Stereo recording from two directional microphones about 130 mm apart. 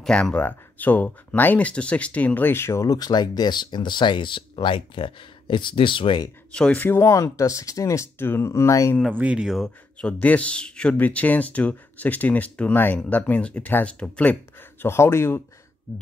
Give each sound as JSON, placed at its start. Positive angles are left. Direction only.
{"t": 0.0, "sound": "speech", "side_deg": 5}
{"t": 6.5, "sound": "speech", "side_deg": 10}
{"t": 9.1, "sound": "speech", "side_deg": -10}
{"t": 9.9, "sound": "speech", "side_deg": 10}
{"t": 14.8, "sound": "speech", "side_deg": 20}